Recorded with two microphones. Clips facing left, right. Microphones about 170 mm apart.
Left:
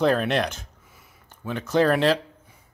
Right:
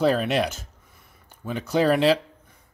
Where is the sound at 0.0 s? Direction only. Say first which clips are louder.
Even; 5° right (ahead or behind).